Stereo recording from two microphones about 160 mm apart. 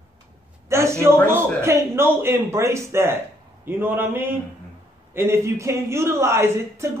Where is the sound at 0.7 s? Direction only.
15° right (ahead or behind).